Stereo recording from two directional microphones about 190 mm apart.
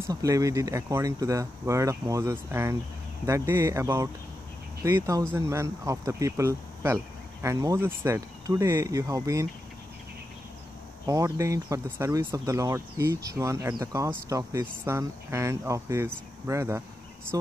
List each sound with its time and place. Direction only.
0.0 s speech: 15° right (ahead or behind)
11.1 s speech: 15° right (ahead or behind)